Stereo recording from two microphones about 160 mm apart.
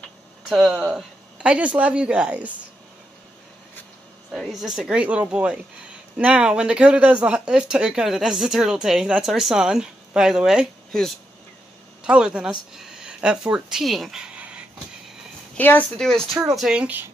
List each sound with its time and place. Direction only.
0.5 s speech: 5° right (ahead or behind)
4.3 s speech: centre (ahead or behind)
15.5 s a woman's voice: 10° left (ahead or behind); by 17.1 s 10° right (ahead or behind)